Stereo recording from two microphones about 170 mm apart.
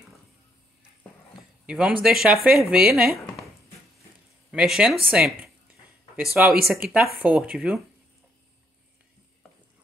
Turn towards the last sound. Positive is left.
turn(degrees=-5)  # may be behind; listen again after turning